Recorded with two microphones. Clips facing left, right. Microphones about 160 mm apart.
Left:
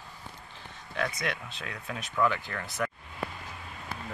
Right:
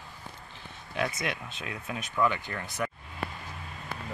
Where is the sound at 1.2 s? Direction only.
5° right (ahead or behind).